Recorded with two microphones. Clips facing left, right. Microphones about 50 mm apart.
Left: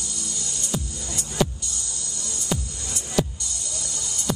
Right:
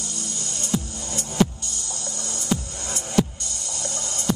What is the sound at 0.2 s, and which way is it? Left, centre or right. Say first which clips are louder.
Music: right 1 dB; right.